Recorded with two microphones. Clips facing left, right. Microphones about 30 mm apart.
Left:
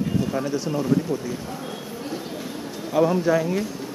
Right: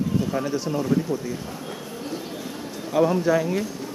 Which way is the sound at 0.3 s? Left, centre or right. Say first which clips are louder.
Even; centre.